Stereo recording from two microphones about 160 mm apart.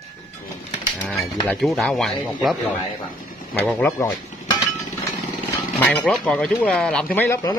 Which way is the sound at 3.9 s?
25° left (ahead or behind).